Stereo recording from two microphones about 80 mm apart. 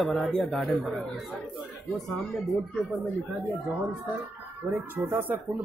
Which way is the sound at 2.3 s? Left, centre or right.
Centre.